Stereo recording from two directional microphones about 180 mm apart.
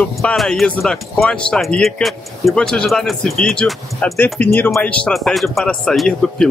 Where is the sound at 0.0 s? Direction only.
5° left (ahead or behind).